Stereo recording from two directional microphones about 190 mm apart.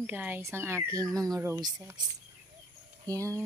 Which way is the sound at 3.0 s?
15° right (ahead or behind).